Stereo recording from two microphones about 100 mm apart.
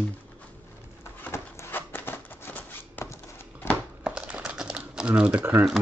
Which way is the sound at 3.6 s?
25° left (ahead or behind).